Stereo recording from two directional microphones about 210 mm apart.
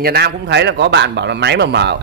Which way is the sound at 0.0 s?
50° right (ahead or behind).